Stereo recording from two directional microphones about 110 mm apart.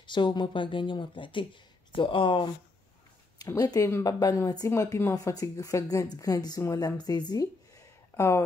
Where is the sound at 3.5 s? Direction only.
30° left (ahead or behind).